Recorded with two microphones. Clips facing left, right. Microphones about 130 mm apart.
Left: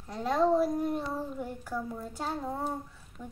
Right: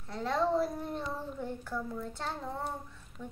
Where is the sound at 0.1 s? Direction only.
15° left (ahead or behind).